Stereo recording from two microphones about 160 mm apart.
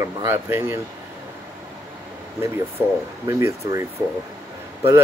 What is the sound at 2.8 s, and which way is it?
Speech, 15° right (ahead or behind).